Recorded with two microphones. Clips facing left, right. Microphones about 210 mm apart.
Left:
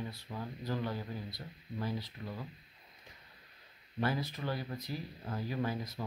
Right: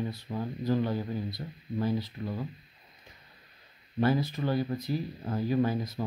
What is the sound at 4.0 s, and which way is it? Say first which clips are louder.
Speech: right 8 dB; 30° right (ahead or behind).